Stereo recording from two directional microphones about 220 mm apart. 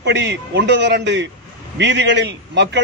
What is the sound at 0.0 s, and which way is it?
A man's voice, 50° right (ahead or behind).